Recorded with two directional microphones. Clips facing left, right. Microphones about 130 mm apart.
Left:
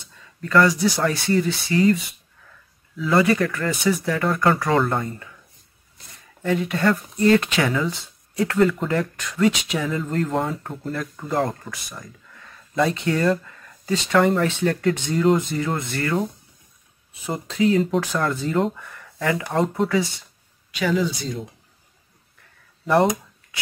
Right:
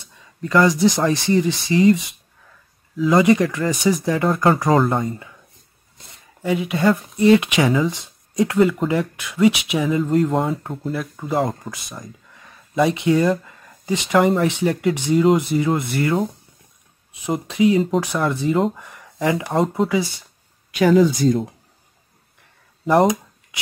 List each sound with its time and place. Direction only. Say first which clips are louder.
0.6 s speech: right 2 dB; 20° right (ahead or behind)
3.0 s speech: right 4 dB; 15° right (ahead or behind)
4.2 s speech: right 3 dB; 30° right (ahead or behind)
4.7 s speech: right 3 dB; 5° right (ahead or behind)
6.4 s speech: right 2 dB; 10° right (ahead or behind)
11.7 s speech: right 2 dB; 20° right (ahead or behind)
17.3 s speech: right 3 dB; 10° right (ahead or behind)
19.5 s speech: right 1 dB; 5° right (ahead or behind)
20.7 s speech: right 8 dB; 45° right (ahead or behind)
22.8 s a sound: right 3 dB; 10° right (ahead or behind)